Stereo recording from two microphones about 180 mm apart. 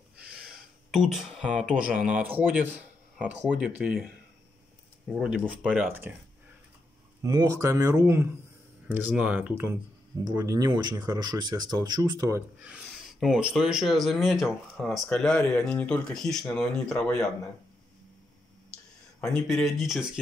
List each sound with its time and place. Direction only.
0.2 s speech: 5° right (ahead or behind)
5.1 s speech: centre (ahead or behind)
5.7 s speech: 10° right (ahead or behind)
7.2 s speech: 20° right (ahead or behind); by 17.3 s 5° left (ahead or behind)
19.2 s speech: 5° left (ahead or behind)